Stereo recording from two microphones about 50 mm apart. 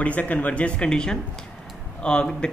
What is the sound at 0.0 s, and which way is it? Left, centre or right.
Speech, left.